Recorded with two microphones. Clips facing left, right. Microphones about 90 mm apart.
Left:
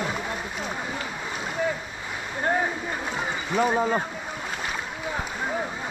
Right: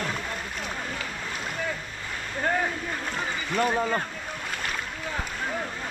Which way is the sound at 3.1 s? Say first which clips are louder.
Left 2 dB; 5° left (ahead or behind).